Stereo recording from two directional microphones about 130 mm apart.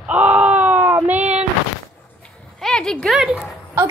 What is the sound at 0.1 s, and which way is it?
Baby cry, 10° right (ahead or behind).